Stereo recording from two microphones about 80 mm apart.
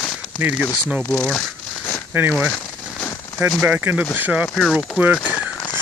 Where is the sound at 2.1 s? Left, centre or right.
Right.